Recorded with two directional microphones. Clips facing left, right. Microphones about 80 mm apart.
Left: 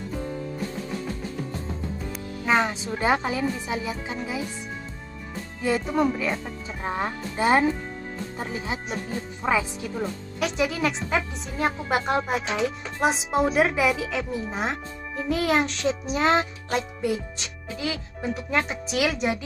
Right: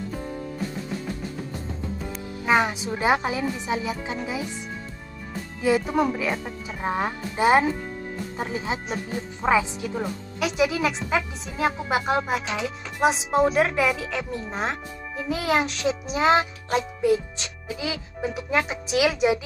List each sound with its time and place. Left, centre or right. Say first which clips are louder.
2.4 s speech: right 1 dB; centre
5.6 s speech: right 2 dB; centre
10.4 s speech: right 2 dB; centre